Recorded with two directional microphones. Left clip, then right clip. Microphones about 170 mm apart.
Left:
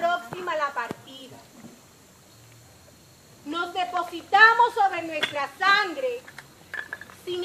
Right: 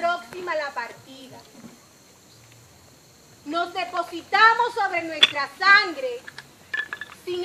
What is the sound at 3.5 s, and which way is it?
A woman's voice, 10° right (ahead or behind).